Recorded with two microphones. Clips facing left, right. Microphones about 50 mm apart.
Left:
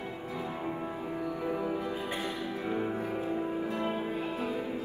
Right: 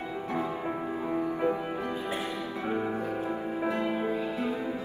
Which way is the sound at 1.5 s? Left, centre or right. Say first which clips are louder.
Right 1 dB; right.